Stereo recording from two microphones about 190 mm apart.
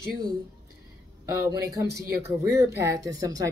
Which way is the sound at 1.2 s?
15° right (ahead or behind).